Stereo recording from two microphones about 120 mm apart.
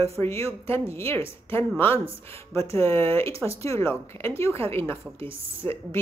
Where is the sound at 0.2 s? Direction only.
20° left (ahead or behind).